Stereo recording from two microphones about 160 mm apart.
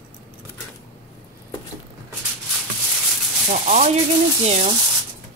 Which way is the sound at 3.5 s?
50° right (ahead or behind).